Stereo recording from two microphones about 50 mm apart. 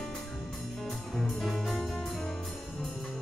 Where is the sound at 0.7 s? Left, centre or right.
Centre.